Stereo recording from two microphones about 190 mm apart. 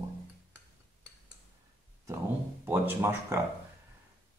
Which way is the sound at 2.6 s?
10° right (ahead or behind).